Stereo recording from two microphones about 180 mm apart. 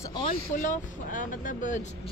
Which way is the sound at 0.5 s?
45° left (ahead or behind).